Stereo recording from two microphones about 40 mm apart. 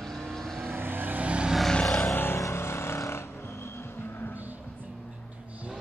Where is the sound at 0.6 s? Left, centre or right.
Right.